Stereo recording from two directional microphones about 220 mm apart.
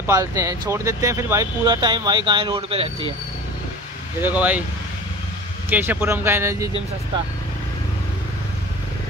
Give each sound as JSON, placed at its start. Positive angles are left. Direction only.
{"t": 0.0, "sound": "speech", "side_deg": -15}
{"t": 4.2, "sound": "speech", "side_deg": -5}
{"t": 5.7, "sound": "speech", "side_deg": -10}